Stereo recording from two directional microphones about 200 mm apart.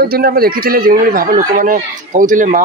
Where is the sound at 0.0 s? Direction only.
50° right (ahead or behind).